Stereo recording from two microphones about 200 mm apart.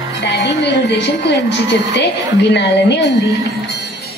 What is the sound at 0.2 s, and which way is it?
A woman's voice, 60° left (ahead or behind).